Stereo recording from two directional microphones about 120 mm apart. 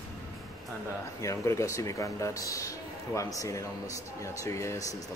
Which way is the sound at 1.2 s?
25° left (ahead or behind).